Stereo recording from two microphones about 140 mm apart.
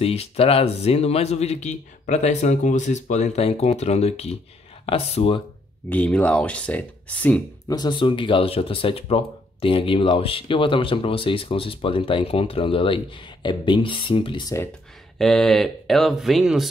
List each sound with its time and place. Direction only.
0.0 s speech: 45° left (ahead or behind)
5.9 s speech: 10° left (ahead or behind)
7.6 s speech: 30° left (ahead or behind)
15.1 s speech: 5° left (ahead or behind)